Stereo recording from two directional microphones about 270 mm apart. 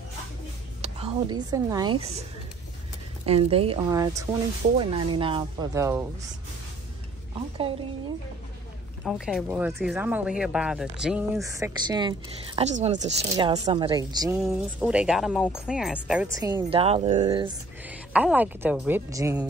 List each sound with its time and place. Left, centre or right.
0.8 s a woman's voice: right
3.3 s speech: right
9.0 s speech: centre
14.3 s speech: centre
17.8 s speech: centre